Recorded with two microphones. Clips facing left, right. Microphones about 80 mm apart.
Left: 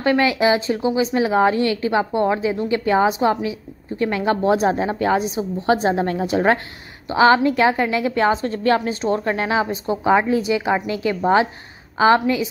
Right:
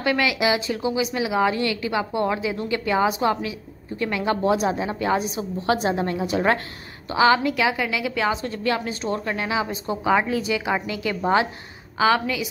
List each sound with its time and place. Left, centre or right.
0.0 s a woman's voice: left